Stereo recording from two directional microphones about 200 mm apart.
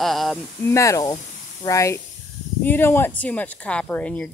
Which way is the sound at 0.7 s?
15° left (ahead or behind).